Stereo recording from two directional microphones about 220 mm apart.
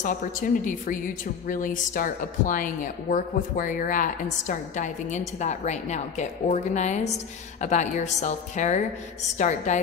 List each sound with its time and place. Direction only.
0.0 s a woman's voice: 35° left (ahead or behind)